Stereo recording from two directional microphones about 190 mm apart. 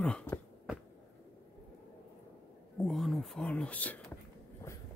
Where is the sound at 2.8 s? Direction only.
Centre (ahead or behind).